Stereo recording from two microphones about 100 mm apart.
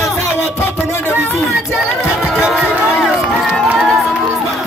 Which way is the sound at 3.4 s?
Centre (ahead or behind).